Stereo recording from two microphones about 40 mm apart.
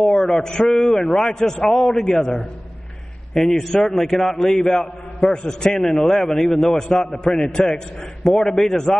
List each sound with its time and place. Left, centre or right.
0.0 s a man's voice: centre